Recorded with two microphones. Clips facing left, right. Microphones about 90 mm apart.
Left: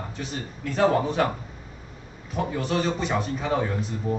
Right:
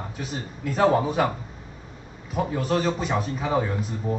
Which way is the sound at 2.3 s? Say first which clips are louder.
Right 2 dB; centre (ahead or behind).